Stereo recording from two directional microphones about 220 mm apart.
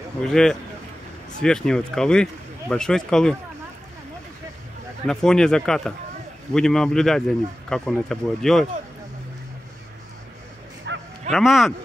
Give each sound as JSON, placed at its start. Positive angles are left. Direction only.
{"t": 0.2, "sound": "speech", "side_deg": 0}
{"t": 5.0, "sound": "speech", "side_deg": 5}
{"t": 10.9, "sound": "bow-wow", "side_deg": -55}
{"t": 11.3, "sound": "speech", "side_deg": 0}